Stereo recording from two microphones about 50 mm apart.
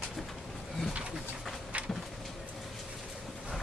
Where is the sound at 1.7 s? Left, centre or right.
Right.